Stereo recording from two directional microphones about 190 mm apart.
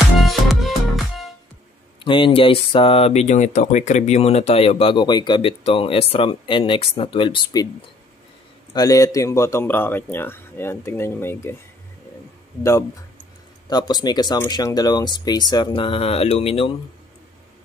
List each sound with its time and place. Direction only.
0.2 s music: centre (ahead or behind)
2.0 s speech: 25° left (ahead or behind)
8.7 s a man's voice: 20° left (ahead or behind)
13.7 s speech: 20° left (ahead or behind)